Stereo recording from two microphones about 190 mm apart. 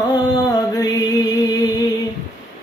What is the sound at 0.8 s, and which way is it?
Music, 20° left (ahead or behind).